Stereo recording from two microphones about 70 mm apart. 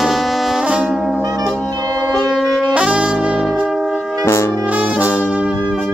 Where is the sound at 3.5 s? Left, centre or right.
Centre.